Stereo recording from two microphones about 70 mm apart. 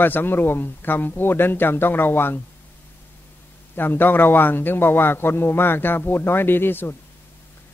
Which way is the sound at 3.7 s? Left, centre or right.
Left.